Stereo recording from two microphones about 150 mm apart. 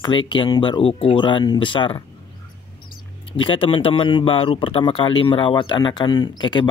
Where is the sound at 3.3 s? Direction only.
35° left (ahead or behind).